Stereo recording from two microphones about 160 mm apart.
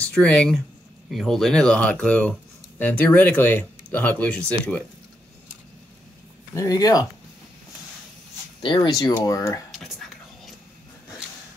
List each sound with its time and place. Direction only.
0.1 s speech: 5° left (ahead or behind)
6.5 s speech: 20° left (ahead or behind)
8.6 s speech: 30° left (ahead or behind)
9.1 s speech: 20° left (ahead or behind)
9.7 s whispering: centre (ahead or behind)